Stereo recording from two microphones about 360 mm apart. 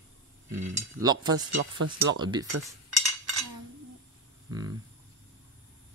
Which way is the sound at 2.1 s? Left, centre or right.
Centre.